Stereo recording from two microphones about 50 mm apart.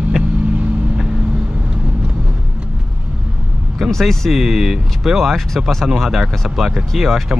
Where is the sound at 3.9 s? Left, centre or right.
Centre.